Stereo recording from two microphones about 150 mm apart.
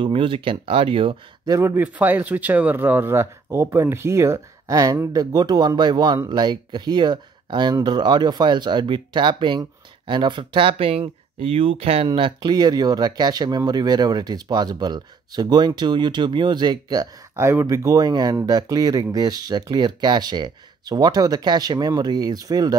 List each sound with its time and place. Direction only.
0.0 s speech: 35° right (ahead or behind)
1.6 s speech: 15° right (ahead or behind)